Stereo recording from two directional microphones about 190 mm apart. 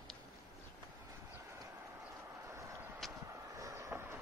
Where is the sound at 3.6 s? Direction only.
15° right (ahead or behind).